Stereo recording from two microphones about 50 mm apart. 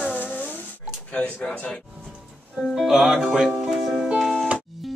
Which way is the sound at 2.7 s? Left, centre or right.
Centre.